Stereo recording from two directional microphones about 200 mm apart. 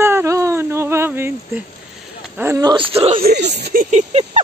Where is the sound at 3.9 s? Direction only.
35° right (ahead or behind).